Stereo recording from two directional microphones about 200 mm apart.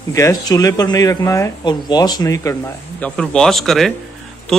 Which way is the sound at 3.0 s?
5° left (ahead or behind).